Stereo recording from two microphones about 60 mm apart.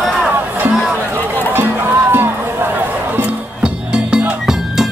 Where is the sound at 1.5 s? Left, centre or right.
Right.